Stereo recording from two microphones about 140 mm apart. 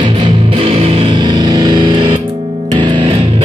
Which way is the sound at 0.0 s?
40° right (ahead or behind).